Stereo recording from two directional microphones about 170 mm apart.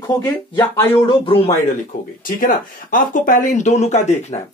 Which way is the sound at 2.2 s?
55° left (ahead or behind).